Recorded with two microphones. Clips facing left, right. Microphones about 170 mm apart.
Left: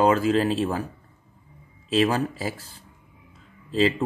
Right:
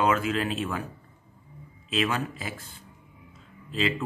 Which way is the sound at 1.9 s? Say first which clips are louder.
Left 6 dB; 35° left (ahead or behind).